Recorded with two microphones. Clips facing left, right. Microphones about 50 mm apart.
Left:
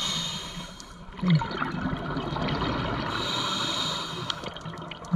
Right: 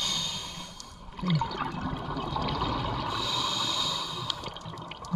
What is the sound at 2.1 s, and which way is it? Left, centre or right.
Water, left.